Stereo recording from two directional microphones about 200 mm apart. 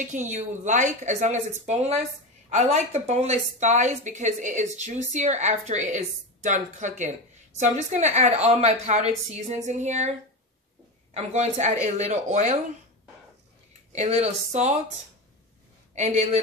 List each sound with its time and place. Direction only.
0.0 s a woman's voice: 40° right (ahead or behind)
11.1 s a woman's voice: 35° right (ahead or behind)
13.9 s a woman's voice: 35° right (ahead or behind)
15.9 s speech: 35° right (ahead or behind)